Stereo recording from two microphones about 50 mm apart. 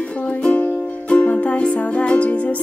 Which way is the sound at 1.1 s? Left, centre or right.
Left.